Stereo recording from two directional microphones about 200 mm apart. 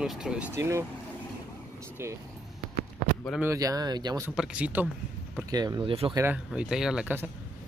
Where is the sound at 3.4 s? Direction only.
15° right (ahead or behind).